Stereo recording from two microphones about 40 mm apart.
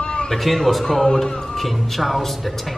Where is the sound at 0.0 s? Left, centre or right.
Left.